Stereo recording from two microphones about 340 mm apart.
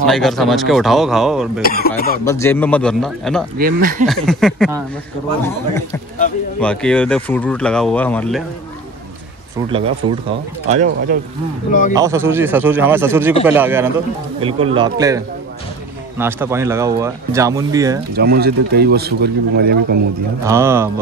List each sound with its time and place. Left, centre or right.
0.0 s speech: centre
1.6 s speech: left
2.2 s speech: centre
3.5 s speech: right
4.0 s a man's voice: centre
9.7 s speech: centre
11.9 s speech: centre
18.1 s speech: right
20.4 s speech: centre